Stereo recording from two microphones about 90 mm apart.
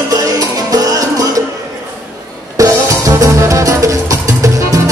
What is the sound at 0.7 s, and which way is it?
Music, 40° right (ahead or behind).